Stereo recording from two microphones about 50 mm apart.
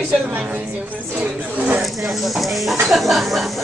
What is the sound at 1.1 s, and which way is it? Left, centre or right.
Speech, right.